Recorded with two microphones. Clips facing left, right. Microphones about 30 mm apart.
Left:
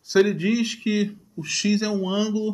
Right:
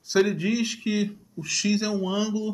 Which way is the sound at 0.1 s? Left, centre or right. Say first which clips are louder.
Left 3 dB; centre.